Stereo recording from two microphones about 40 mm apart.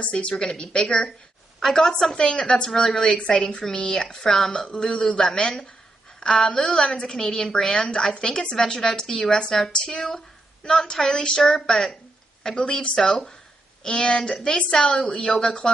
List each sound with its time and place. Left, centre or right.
0.1 s a woman's voice: left
1.7 s a woman's voice: centre
2.1 s a woman's voice: centre
13.8 s a woman's voice: left